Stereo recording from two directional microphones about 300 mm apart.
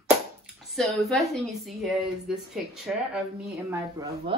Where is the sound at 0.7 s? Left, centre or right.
Centre.